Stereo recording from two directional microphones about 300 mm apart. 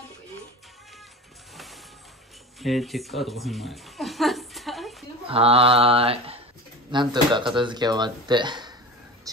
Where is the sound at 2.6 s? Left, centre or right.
Centre.